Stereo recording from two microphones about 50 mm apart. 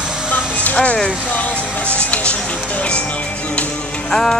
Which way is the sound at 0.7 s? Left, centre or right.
Centre.